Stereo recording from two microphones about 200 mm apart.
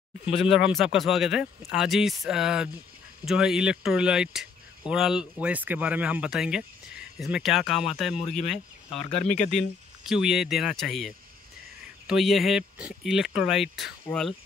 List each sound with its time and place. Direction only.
0.4 s speech: 5° right (ahead or behind)
9.0 s speech: 35° left (ahead or behind)
9.5 s speech: centre (ahead or behind)